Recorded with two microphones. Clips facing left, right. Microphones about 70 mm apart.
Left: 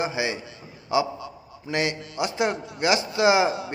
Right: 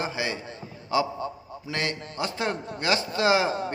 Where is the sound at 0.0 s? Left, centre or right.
Left.